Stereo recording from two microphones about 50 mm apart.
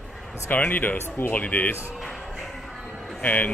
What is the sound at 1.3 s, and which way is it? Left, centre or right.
Speech, left.